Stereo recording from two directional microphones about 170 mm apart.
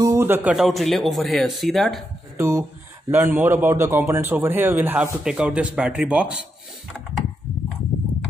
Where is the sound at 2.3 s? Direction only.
15° right (ahead or behind).